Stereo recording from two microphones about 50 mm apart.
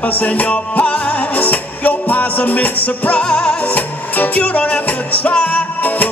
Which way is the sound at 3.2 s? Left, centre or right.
Centre.